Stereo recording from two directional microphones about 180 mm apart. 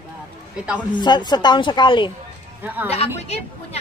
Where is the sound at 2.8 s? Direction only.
35° left (ahead or behind).